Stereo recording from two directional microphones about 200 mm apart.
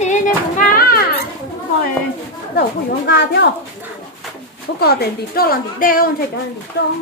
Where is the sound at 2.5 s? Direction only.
55° left (ahead or behind).